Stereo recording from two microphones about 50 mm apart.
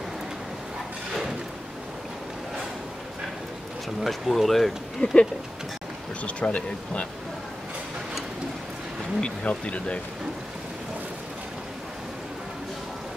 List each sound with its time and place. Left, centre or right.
4.0 s speech: centre
5.0 s speech: centre
9.2 s speech: left